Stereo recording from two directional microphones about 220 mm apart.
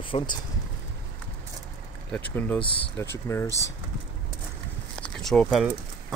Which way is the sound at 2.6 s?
25° left (ahead or behind).